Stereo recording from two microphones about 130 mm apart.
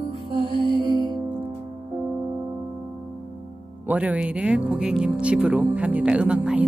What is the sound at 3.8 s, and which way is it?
Speech, 10° right (ahead or behind).